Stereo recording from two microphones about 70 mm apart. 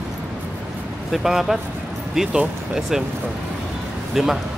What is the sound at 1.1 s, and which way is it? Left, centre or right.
Speech, centre.